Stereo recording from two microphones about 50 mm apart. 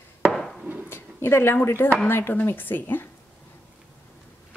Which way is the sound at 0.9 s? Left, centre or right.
Left.